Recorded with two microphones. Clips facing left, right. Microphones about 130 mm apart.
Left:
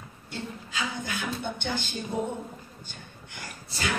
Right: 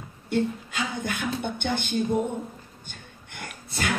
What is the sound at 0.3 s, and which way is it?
Speech, 55° right (ahead or behind).